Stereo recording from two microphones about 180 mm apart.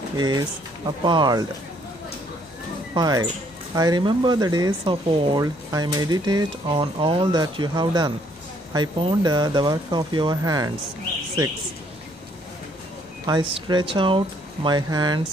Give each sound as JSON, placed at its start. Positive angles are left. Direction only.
{"t": 1.0, "sound": "speech", "side_deg": -25}
{"t": 2.9, "sound": "speech", "side_deg": -20}
{"t": 13.3, "sound": "speech", "side_deg": -30}